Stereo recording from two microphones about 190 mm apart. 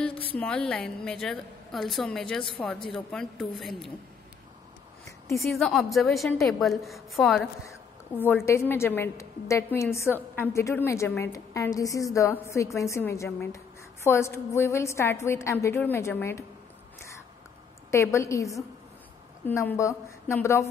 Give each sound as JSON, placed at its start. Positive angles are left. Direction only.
{"t": 0.1, "sound": "a sound", "side_deg": 30}
{"t": 0.4, "sound": "a woman's voice", "side_deg": 5}
{"t": 5.5, "sound": "a woman's voice", "side_deg": 0}
{"t": 8.2, "sound": "a woman's voice", "side_deg": 10}
{"t": 17.9, "sound": "a woman's voice", "side_deg": 15}